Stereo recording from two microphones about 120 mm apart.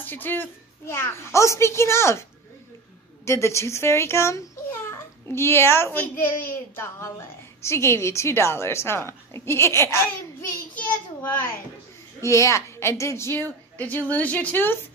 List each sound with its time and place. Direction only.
0.0 s a child's voice: 15° left (ahead or behind)
3.3 s a child's voice: 25° left (ahead or behind)
10.7 s child singing: 15° left (ahead or behind)
12.2 s a child's voice: 25° left (ahead or behind)